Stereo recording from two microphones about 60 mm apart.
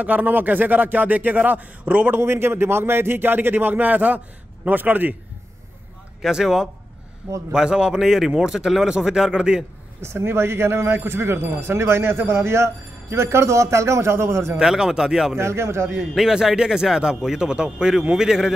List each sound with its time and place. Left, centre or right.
0.0 s speech: right
2.1 s a man's voice: right
6.2 s a man's voice: centre
10.0 s speech: right
14.6 s a man's voice: centre
15.3 s speech: right
16.0 s a man's voice: centre